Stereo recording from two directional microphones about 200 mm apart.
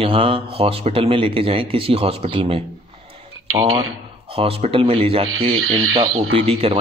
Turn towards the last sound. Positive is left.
turn(degrees=-30)  # may be behind; listen again after turning